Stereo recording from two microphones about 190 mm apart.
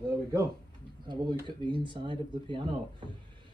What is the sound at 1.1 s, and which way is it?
Speech, 25° right (ahead or behind).